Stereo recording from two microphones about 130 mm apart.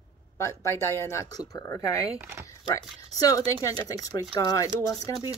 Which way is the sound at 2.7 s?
25° left (ahead or behind).